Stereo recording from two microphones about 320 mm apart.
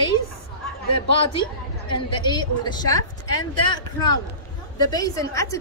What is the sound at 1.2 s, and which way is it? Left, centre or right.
A woman's voice, centre.